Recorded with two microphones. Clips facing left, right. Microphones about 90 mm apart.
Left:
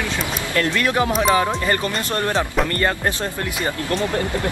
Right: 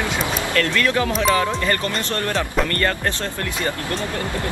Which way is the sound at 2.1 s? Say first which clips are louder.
Left 2 dB; 20° left (ahead or behind).